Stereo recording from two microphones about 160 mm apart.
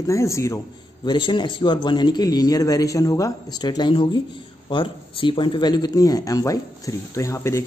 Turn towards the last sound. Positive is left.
turn(degrees=20)  # may be behind; listen again after turning